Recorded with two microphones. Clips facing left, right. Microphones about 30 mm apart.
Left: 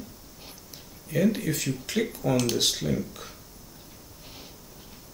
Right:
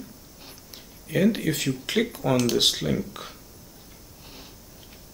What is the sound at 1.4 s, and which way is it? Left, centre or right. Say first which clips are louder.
Speech: right 3 dB; centre.